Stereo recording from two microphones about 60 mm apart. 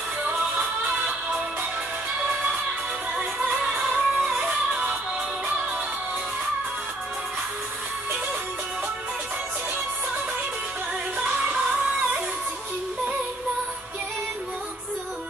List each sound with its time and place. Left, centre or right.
0.2 s music: right
3.6 s music: centre